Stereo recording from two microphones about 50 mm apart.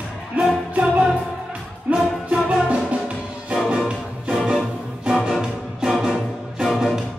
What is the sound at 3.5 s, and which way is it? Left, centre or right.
Music, centre.